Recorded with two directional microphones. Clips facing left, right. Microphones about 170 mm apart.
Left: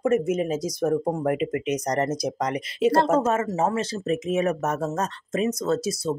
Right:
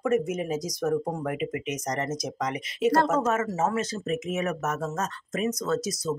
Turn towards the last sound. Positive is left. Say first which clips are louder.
# left 3 dB
turn(degrees=30)  # may be behind; listen again after turning